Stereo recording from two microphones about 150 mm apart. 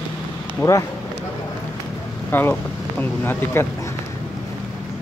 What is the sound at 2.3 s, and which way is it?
Speech, 15° left (ahead or behind).